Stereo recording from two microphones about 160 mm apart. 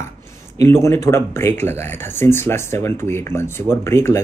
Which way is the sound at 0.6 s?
15° left (ahead or behind).